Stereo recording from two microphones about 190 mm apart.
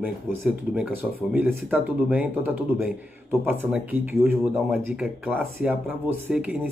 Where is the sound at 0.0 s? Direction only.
5° right (ahead or behind).